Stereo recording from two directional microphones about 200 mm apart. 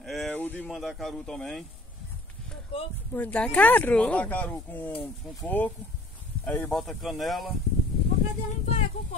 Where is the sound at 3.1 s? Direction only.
5° left (ahead or behind).